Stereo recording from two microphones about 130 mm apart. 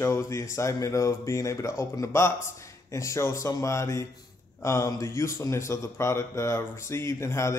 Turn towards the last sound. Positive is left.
turn(degrees=20)  # may be behind; listen again after turning